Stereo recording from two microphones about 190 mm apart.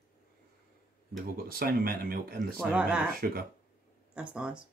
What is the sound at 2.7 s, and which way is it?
Speech, 5° right (ahead or behind).